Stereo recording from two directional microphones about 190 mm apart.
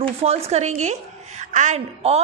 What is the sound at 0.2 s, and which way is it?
A woman's voice, 35° right (ahead or behind).